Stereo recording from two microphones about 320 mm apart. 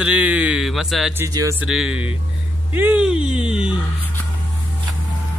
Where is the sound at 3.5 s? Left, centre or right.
Centre.